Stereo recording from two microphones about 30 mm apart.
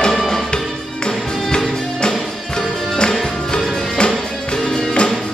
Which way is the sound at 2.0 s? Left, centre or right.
Centre.